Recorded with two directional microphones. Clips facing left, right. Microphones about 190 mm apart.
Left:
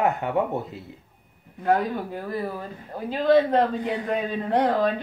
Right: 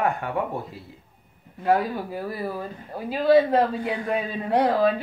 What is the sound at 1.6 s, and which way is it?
A man's voice, 5° right (ahead or behind).